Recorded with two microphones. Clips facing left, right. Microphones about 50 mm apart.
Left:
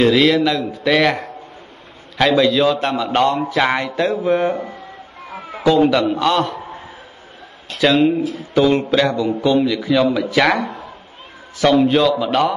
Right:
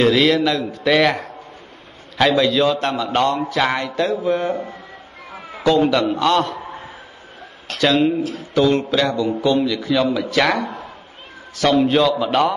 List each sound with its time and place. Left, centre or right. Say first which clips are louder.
0.0 s a man's voice: left 2 dB; centre
5.6 s a man's voice: left 2 dB; centre
7.8 s a man's voice: left 2 dB; centre